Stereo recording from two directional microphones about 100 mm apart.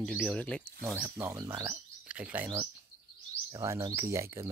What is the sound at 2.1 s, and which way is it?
Speech, 15° right (ahead or behind).